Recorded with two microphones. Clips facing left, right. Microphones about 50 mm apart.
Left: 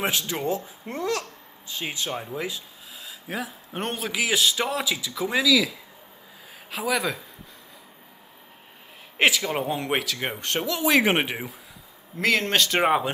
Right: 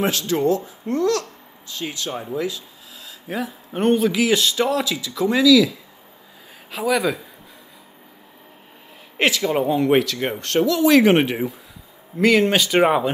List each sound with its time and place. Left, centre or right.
0.0 s a man's voice: centre
3.3 s a man's voice: centre
6.7 s speech: centre
9.1 s speech: centre
10.4 s a man's voice: centre